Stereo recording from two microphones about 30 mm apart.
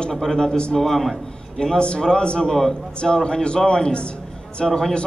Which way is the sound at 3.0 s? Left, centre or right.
Left.